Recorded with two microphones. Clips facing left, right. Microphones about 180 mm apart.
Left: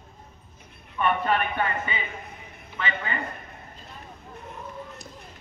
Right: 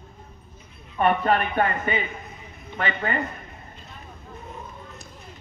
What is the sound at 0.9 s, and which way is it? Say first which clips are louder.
A man's voice: right 3 dB; 40° right (ahead or behind).